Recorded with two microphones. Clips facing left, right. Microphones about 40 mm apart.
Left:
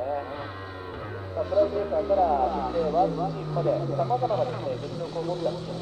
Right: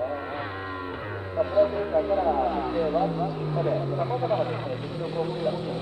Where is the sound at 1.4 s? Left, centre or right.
Right.